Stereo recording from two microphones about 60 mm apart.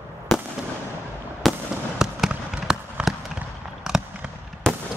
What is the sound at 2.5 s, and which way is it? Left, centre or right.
Fireworks, centre.